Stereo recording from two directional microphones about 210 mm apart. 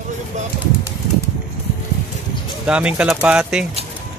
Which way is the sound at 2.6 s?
5° right (ahead or behind).